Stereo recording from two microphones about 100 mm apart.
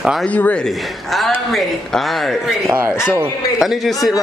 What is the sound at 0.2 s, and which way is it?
Speech, 15° left (ahead or behind).